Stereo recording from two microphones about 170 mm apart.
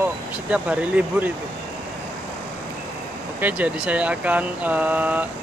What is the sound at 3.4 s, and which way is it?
Speech, 10° right (ahead or behind).